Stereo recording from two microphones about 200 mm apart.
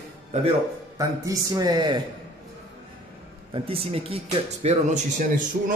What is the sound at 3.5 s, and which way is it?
A man's voice, 30° right (ahead or behind).